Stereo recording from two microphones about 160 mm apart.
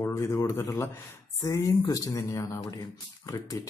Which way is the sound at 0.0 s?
20° left (ahead or behind).